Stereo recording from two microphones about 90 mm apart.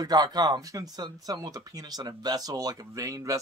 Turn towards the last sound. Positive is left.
turn(degrees=-40)  # may be behind; listen again after turning